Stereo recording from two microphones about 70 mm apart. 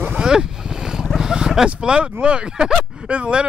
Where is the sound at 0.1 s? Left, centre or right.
Centre.